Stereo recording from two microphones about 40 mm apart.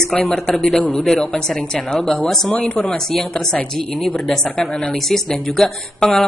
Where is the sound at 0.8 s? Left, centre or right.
Left.